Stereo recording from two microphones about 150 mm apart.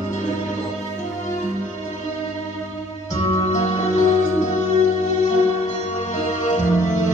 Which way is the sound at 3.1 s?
45° left (ahead or behind).